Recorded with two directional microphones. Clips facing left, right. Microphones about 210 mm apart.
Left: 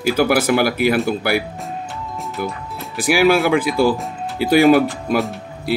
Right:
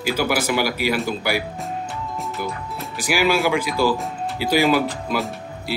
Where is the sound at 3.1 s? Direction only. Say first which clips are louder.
Left 5 dB; 55° left (ahead or behind).